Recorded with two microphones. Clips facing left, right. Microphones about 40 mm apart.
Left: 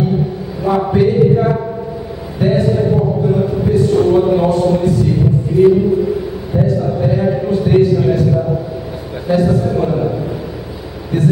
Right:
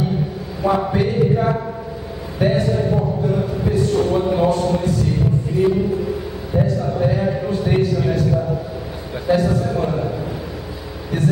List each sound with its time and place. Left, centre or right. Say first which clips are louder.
0.7 s a man's voice: left 5 dB; centre
2.4 s a sound: left 4 dB; centre
6.5 s a man's voice: left 4 dB; centre